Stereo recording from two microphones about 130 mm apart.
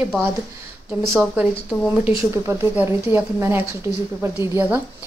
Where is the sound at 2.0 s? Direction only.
15° right (ahead or behind).